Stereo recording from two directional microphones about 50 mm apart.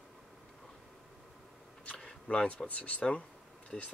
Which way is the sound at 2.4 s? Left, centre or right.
Left.